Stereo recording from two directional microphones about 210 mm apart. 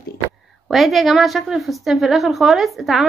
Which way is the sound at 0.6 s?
Centre (ahead or behind).